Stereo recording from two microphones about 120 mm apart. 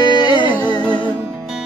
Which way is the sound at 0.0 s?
40° left (ahead or behind).